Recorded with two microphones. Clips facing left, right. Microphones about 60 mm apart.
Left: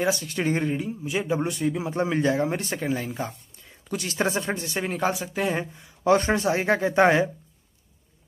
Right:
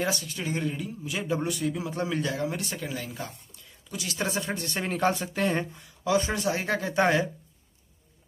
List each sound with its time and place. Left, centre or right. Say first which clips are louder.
0.2 s speech: left 6 dB; left
0.7 s speech: left 5 dB; left
3.2 s a sound: left 6 dB; left
4.1 s speech: left 4 dB; left
4.6 s speech: left 1 dB; centre
6.0 s speech: left 5 dB; left
6.3 s speech: left 5 dB; left